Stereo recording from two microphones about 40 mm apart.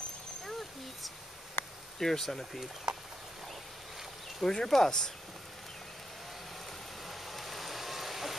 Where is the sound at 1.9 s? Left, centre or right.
Centre.